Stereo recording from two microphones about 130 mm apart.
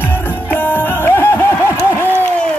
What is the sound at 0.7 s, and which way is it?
Music, 20° left (ahead or behind).